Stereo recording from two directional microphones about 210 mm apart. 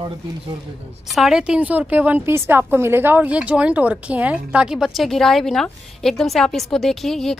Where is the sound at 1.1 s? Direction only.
Centre (ahead or behind).